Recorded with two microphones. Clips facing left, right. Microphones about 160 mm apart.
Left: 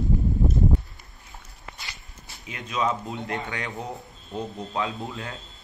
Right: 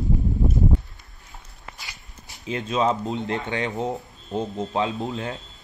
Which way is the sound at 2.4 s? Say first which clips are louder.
Right 5 dB; 30° right (ahead or behind).